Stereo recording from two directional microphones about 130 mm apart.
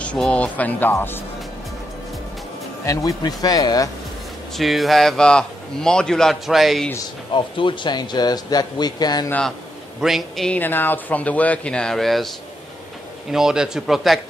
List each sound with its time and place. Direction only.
0.0 s speech: 10° left (ahead or behind)
2.8 s speech: 25° left (ahead or behind)
4.6 s a man's voice: centre (ahead or behind)
7.3 s speech: 40° left (ahead or behind)
9.9 s a man's voice: centre (ahead or behind)
10.6 s speech: 15° left (ahead or behind)
13.3 s a man's voice: 5° right (ahead or behind)